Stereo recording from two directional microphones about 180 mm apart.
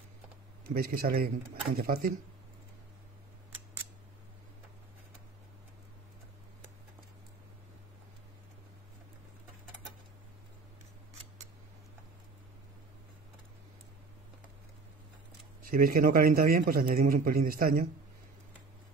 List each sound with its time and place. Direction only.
0.7 s speech: 55° right (ahead or behind)
15.7 s a man's voice: 50° right (ahead or behind)